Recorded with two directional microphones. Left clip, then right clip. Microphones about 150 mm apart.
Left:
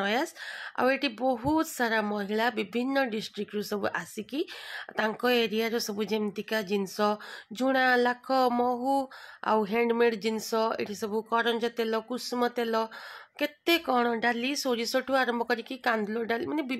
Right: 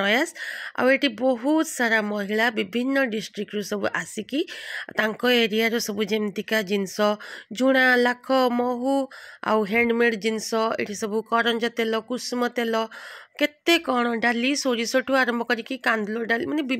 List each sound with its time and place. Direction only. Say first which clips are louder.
0.0 s a woman's voice: right 7 dB; 25° right (ahead or behind)